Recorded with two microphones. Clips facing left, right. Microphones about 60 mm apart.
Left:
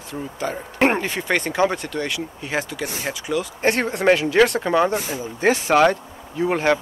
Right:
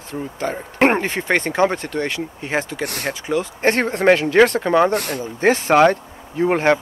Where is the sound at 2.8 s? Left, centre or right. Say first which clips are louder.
Right 3 dB; right.